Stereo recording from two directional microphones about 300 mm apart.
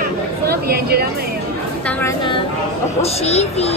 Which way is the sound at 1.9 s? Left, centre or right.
Centre.